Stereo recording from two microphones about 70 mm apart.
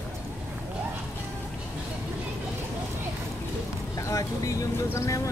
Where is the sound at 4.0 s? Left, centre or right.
Left.